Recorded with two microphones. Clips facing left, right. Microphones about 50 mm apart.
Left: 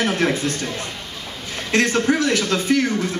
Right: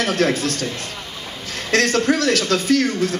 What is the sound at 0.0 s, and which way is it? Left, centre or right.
A man's voice, left.